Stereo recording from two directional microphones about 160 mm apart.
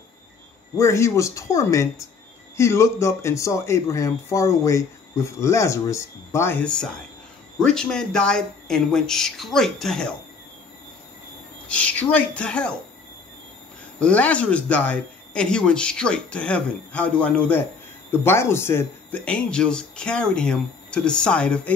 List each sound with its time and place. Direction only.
0.7 s speech: 20° left (ahead or behind)
11.6 s speech: 10° left (ahead or behind)
13.9 s speech: 5° left (ahead or behind)